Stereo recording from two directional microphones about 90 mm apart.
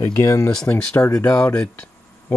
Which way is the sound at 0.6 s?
20° left (ahead or behind).